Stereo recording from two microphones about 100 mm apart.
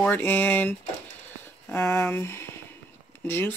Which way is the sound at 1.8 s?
10° left (ahead or behind).